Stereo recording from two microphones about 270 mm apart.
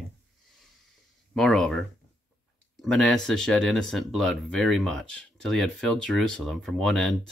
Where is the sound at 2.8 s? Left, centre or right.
Centre.